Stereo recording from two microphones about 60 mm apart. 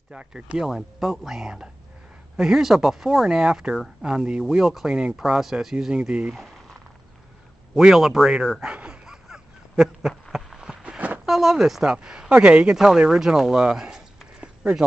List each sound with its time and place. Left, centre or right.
0.1 s speech: centre
5.9 s speech: centre
7.7 s speech: centre
8.7 s dog: centre
10.3 s a sound: centre
10.8 s a sound: right
11.2 s speech: centre